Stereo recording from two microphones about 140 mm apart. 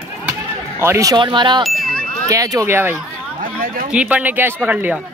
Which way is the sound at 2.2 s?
25° right (ahead or behind).